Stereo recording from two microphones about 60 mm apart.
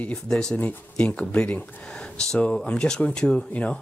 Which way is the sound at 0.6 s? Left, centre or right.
Left.